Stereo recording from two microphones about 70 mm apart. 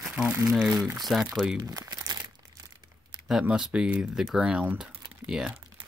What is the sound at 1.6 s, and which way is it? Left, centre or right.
Crumpling, right.